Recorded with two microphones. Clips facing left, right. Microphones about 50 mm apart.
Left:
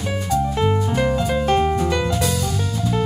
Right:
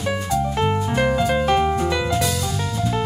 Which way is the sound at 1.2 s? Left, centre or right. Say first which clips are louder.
Right 2 dB; right.